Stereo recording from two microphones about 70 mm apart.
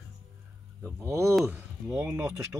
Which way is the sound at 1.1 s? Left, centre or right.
Right.